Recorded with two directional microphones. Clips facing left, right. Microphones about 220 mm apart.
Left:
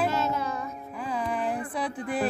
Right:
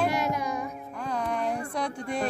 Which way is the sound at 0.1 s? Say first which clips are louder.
Even; 15° right (ahead or behind).